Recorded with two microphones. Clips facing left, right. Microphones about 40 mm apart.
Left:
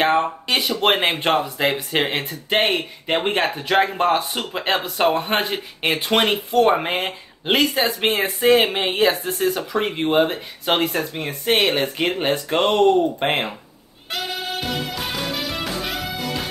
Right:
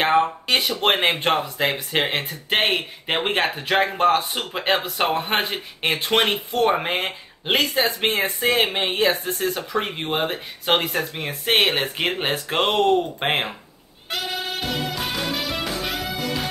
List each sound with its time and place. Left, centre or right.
0.1 s speech: centre
3.8 s speech: centre
7.4 s speech: centre
11.2 s speech: centre
14.1 s music: centre